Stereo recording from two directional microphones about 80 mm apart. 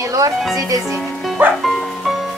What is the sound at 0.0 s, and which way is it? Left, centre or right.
Speech, right.